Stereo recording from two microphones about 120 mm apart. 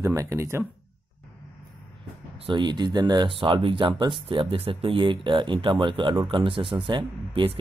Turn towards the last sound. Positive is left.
turn(degrees=-45)  # may be behind; listen again after turning